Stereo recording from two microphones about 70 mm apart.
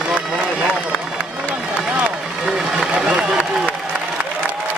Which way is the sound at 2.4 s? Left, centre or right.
Centre.